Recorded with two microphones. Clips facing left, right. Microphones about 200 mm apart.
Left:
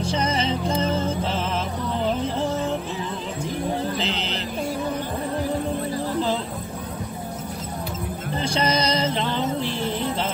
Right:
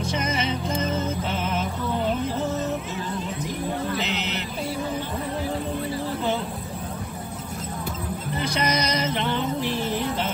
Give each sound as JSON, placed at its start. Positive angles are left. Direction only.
{"t": 0.0, "sound": "music", "side_deg": 30}
{"t": 4.0, "sound": "vehicle", "side_deg": 30}
{"t": 8.4, "sound": "music", "side_deg": 30}